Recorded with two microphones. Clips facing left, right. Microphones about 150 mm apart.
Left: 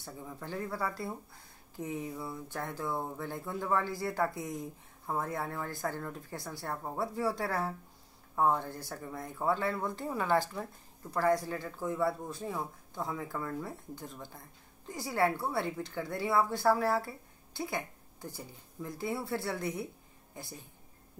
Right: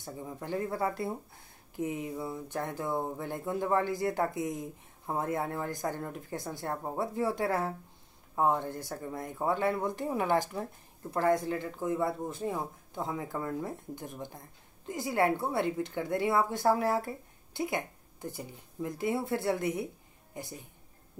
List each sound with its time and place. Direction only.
0.0 s speech: 20° right (ahead or behind)